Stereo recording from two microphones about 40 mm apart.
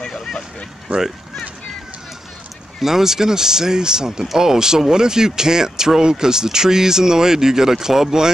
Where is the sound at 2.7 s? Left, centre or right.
Centre.